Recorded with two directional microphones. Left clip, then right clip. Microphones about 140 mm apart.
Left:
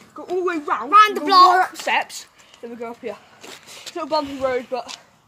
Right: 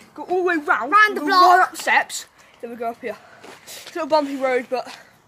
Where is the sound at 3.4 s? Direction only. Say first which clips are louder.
Left 4 dB; 90° left.